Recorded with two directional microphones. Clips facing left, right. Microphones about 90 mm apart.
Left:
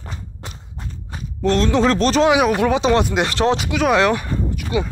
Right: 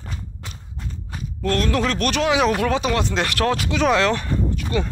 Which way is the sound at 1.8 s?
30° left (ahead or behind).